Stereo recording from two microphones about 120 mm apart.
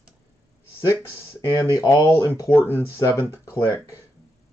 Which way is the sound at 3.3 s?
25° left (ahead or behind).